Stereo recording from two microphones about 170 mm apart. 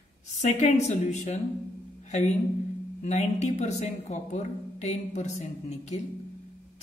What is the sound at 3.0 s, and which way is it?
Speech, 40° left (ahead or behind).